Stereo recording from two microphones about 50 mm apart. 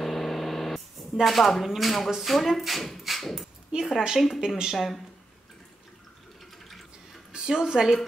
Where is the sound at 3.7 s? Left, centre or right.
Centre.